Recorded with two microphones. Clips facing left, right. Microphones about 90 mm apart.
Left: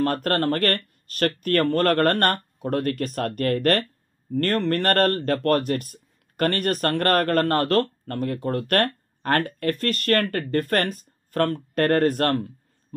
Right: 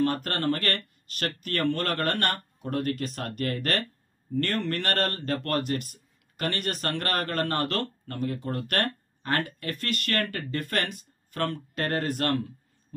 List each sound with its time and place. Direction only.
0.0 s speech: 50° left (ahead or behind)